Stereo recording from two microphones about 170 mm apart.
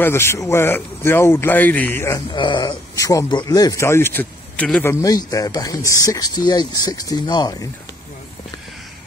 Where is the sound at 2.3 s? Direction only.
30° left (ahead or behind); by 4.9 s 5° left (ahead or behind).